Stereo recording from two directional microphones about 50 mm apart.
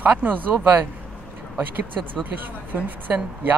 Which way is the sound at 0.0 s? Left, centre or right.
Right.